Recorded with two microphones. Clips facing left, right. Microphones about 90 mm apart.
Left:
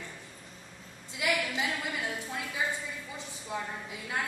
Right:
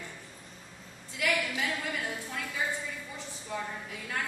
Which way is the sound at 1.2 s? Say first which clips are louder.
Even; 20° left (ahead or behind).